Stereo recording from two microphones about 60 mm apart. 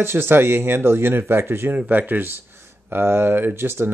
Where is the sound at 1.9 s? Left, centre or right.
Right.